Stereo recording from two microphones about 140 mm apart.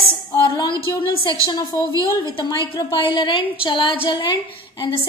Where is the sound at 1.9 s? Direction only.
25° right (ahead or behind).